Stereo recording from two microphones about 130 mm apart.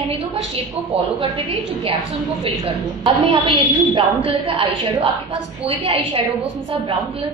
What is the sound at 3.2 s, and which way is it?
A woman's voice, 45° right (ahead or behind).